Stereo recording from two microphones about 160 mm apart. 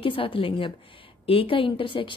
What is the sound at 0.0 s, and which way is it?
Speech, 35° left (ahead or behind).